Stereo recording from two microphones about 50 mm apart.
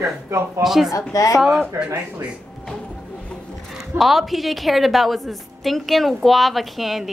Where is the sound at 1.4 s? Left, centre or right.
Centre.